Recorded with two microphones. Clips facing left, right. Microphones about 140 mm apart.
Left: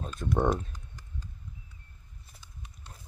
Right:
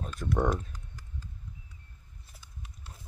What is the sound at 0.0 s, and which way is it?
Typing, 25° left (ahead or behind).